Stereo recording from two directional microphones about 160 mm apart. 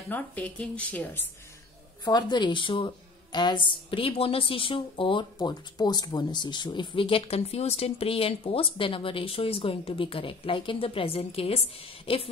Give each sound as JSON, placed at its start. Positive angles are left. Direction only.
{"t": 0.1, "sound": "a woman's voice", "side_deg": 10}
{"t": 2.0, "sound": "a woman's voice", "side_deg": 25}